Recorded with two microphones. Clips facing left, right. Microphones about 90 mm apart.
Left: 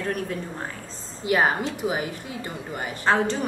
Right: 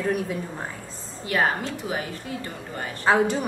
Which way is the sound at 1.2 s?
20° left (ahead or behind).